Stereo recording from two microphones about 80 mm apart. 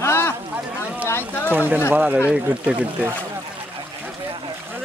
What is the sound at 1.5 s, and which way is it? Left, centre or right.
Speech, right.